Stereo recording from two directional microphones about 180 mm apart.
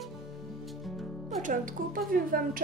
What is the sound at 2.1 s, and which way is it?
Speech, 55° right (ahead or behind).